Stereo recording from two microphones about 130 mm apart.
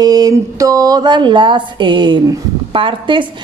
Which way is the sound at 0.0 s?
30° right (ahead or behind).